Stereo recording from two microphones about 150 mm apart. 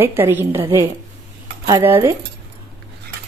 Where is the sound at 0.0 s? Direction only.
15° right (ahead or behind).